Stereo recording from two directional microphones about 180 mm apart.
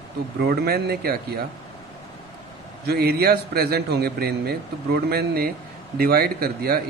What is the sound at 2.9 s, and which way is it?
A man's voice, 60° right (ahead or behind).